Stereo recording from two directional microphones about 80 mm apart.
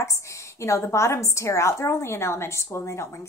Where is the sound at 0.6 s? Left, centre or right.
Left.